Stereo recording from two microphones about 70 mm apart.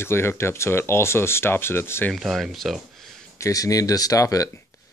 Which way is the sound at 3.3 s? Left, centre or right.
Left.